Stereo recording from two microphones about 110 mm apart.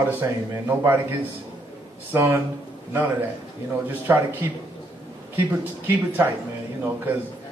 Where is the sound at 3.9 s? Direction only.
15° right (ahead or behind).